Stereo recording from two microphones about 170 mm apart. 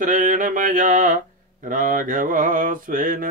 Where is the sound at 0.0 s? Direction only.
50° right (ahead or behind).